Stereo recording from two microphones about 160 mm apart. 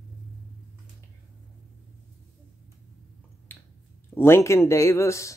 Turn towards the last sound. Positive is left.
turn(degrees=20)  # may be behind; listen again after turning